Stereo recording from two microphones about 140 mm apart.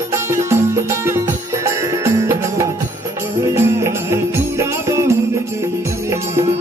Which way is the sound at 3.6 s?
20° right (ahead or behind).